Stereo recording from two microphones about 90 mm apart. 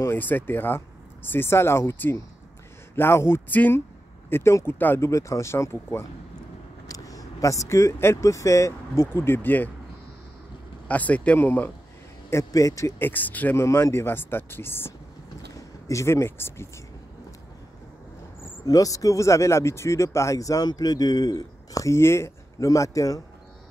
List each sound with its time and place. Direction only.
0.0 s speech: 20° left (ahead or behind)
5.0 s speech: 35° left (ahead or behind)
6.9 s speech: 40° left (ahead or behind); by 9.7 s 20° left (ahead or behind)
10.9 s speech: 15° left (ahead or behind)
12.3 s speech: 35° left (ahead or behind)
13.0 s speech: 20° left (ahead or behind)
13.6 s speech: 30° left (ahead or behind)
18.7 s speech: 40° left (ahead or behind)